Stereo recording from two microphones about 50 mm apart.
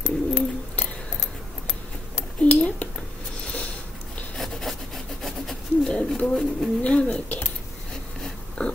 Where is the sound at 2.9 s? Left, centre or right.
Centre.